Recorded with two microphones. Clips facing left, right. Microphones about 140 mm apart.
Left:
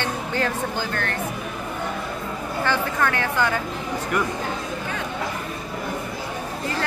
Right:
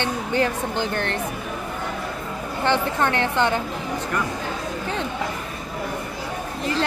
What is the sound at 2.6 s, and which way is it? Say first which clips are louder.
A woman's voice: right 2 dB; 20° right (ahead or behind).